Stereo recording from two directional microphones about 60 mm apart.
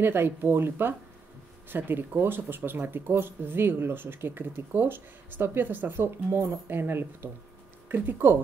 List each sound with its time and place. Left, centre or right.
0.0 s speech: right